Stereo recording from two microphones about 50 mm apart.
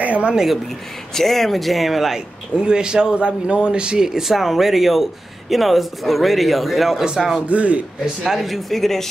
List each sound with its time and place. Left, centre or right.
0.0 s speech: right
0.3 s speech: centre
1.1 s a man's voice: centre
2.6 s a man's voice: centre
7.4 s speech: right
8.0 s a man's voice: centre